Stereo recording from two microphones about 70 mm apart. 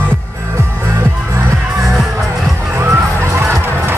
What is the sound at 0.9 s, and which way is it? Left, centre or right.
Music, right.